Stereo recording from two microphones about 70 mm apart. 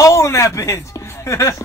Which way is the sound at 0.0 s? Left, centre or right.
Left.